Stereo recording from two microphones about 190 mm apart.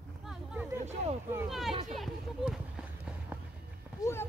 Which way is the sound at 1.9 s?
Centre (ahead or behind).